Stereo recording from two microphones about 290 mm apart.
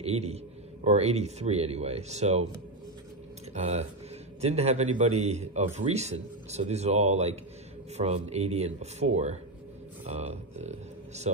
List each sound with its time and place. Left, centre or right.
0.0 s a man's voice: right
3.5 s a man's voice: right